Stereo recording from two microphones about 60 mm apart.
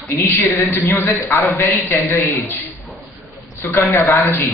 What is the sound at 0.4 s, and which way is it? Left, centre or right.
Speech, left.